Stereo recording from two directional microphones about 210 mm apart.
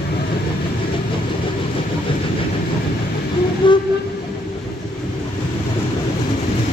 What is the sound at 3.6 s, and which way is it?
Train, 25° left (ahead or behind).